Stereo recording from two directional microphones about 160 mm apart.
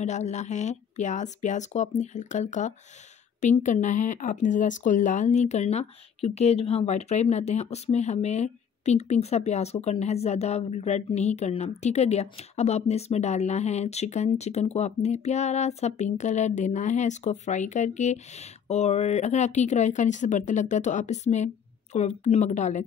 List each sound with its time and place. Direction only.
0.0 s speech: 45° left (ahead or behind)